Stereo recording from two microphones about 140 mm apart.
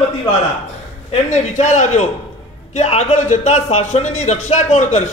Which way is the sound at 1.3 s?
55° left (ahead or behind).